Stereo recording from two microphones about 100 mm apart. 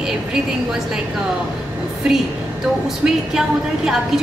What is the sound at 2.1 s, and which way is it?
A woman's voice, 5° right (ahead or behind).